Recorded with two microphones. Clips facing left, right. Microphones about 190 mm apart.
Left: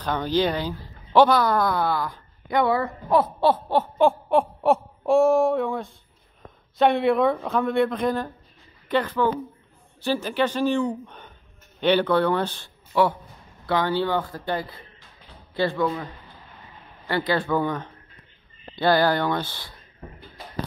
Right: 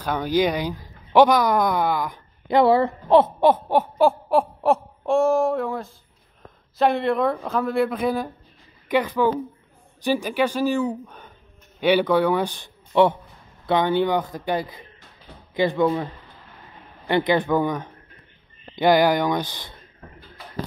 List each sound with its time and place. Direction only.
0.0 s speech: 10° right (ahead or behind)
2.4 s speech: 30° right (ahead or behind)
4.3 s a woman's voice: centre (ahead or behind); by 15.9 s 15° right (ahead or behind)
17.1 s speech: 20° right (ahead or behind)